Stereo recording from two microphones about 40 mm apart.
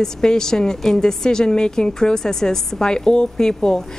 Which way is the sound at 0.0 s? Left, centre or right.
Centre.